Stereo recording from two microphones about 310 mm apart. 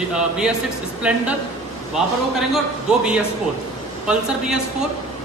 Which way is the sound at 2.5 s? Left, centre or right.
Centre.